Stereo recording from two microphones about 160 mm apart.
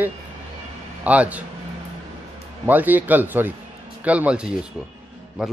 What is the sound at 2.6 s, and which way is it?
Speech, 10° right (ahead or behind).